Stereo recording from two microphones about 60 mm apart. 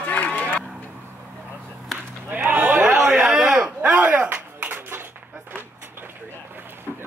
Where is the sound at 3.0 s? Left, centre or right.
Centre.